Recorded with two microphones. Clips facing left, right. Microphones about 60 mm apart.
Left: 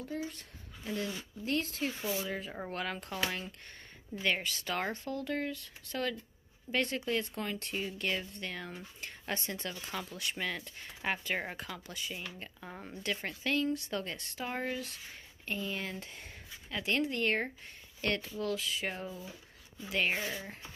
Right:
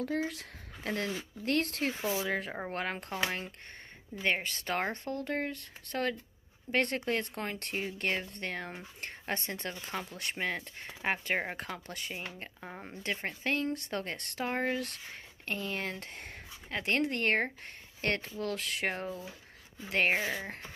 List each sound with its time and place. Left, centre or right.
0.3 s speech: right
2.5 s speech: right
12.5 s speech: right
19.0 s speech: right
19.9 s speech: right